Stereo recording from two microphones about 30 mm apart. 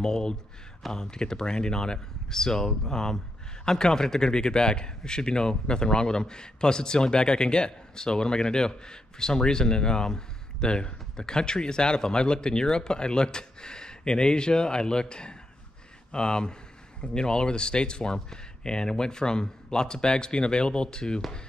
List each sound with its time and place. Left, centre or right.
0.0 s a man's voice: left